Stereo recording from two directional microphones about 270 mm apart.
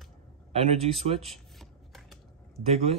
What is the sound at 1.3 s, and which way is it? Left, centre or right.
Rub, centre.